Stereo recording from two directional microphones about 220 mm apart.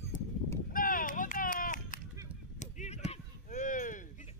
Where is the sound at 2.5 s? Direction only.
30° left (ahead or behind).